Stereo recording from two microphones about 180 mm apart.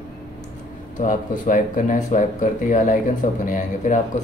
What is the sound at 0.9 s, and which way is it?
Speech, 45° left (ahead or behind).